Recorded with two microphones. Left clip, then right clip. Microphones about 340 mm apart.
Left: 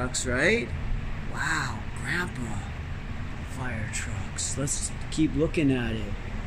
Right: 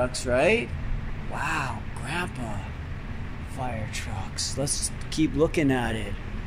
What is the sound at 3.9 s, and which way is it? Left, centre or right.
Speech, centre.